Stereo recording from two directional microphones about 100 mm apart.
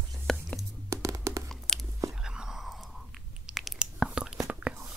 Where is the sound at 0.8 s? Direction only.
30° right (ahead or behind).